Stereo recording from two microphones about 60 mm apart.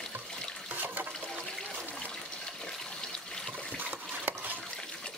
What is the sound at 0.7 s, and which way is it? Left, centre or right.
Toilet flush, right.